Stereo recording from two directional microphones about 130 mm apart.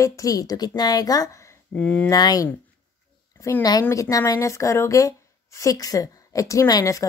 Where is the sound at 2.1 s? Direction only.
30° left (ahead or behind).